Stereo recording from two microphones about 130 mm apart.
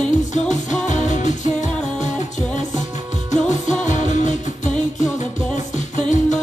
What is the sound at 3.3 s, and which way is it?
Music, 70° left (ahead or behind).